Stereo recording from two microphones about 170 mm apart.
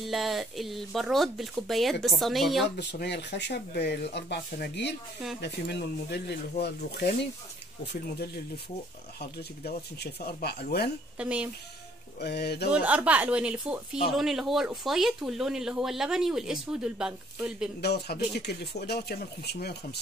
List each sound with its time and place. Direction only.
0.0 s speech: centre (ahead or behind)
2.9 s speech: 90° left; by 10.9 s 70° left (ahead or behind)
11.1 s speech: 5° right (ahead or behind)
12.2 s speech: 75° left (ahead or behind)
12.7 s speech: 10° right (ahead or behind)
17.8 s speech: 75° left (ahead or behind)